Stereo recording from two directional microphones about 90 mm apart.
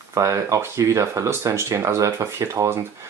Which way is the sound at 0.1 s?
35° right (ahead or behind).